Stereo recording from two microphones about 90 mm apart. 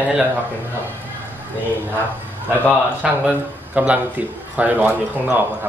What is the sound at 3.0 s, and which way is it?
A man's voice, 15° right (ahead or behind).